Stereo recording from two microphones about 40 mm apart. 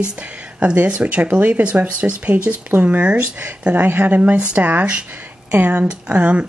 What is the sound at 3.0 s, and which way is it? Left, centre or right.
Speech, right.